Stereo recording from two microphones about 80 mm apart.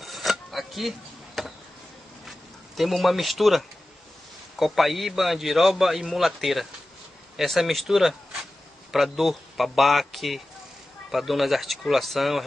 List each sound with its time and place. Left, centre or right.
0.0 s rub: centre
2.2 s a sound: centre
4.6 s a man's voice: centre